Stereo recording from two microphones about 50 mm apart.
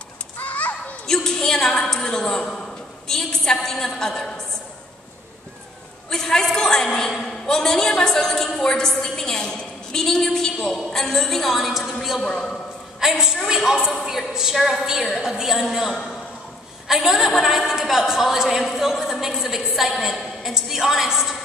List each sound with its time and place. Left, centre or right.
0.4 s children playing: left
1.0 s a woman's voice: centre
6.0 s a woman's voice: centre
12.3 s a woman's voice: centre
13.0 s a woman's voice: centre